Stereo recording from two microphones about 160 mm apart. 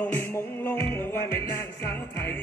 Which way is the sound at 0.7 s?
15° left (ahead or behind).